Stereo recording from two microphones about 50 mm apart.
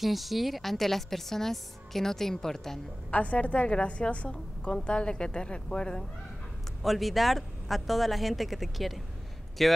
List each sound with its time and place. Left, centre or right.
0.0 s a woman's voice: centre
3.1 s a woman's voice: left
6.8 s a woman's voice: centre